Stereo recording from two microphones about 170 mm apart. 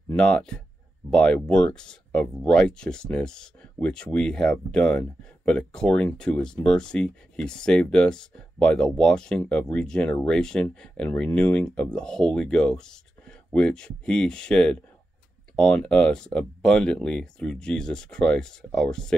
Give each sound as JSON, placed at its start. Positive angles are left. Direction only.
{"t": 0.1, "sound": "speech", "side_deg": 5}